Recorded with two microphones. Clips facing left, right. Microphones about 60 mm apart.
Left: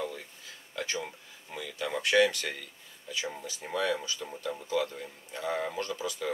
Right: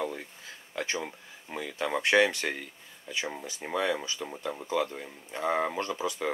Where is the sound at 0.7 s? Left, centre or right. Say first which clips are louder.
Right 2 dB; right.